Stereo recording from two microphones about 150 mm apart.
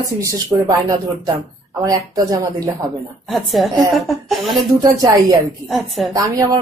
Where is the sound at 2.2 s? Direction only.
20° right (ahead or behind).